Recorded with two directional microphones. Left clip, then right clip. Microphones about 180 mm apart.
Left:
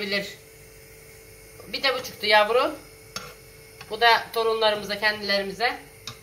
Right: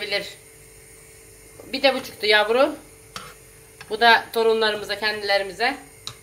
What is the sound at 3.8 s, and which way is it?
A woman's voice, 65° right (ahead or behind).